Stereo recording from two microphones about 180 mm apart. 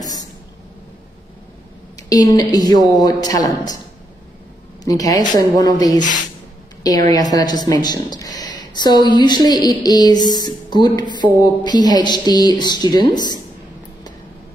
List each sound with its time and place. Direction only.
0.0 s a sound: 20° left (ahead or behind)
2.0 s speech: 20° left (ahead or behind)
4.8 s speech: 20° left (ahead or behind)
7.1 s speech: 20° left (ahead or behind)